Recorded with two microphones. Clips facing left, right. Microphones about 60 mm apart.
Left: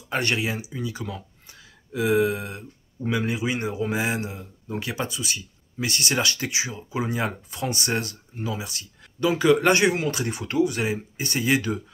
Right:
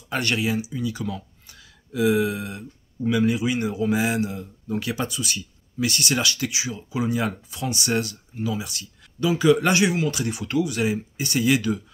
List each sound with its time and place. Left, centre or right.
0.1 s a man's voice: left